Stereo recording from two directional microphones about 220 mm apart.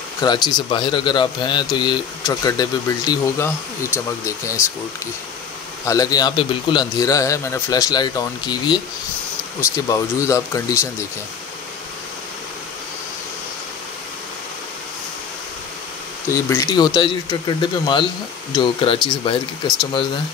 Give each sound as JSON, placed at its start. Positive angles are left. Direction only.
{"t": 0.2, "sound": "a man's voice", "side_deg": 20}
{"t": 3.9, "sound": "speech", "side_deg": -5}
{"t": 5.9, "sound": "speech", "side_deg": 15}
{"t": 9.8, "sound": "speech", "side_deg": 15}
{"t": 16.3, "sound": "a man's voice", "side_deg": 15}